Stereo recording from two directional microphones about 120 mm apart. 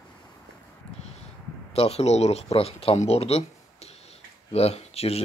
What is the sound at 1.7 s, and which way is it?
Speech, 60° left (ahead or behind).